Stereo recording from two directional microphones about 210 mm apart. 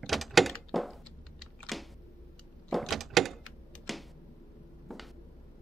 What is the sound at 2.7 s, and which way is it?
Door, centre (ahead or behind).